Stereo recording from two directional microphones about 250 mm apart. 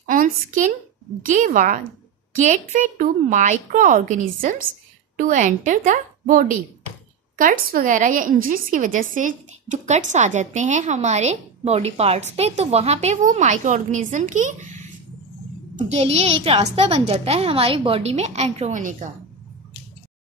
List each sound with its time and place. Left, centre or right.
0.1 s a woman's voice: right
15.9 s a woman's voice: right